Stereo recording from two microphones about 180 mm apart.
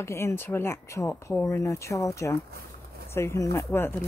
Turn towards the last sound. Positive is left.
turn(degrees=10)  # may be behind; listen again after turning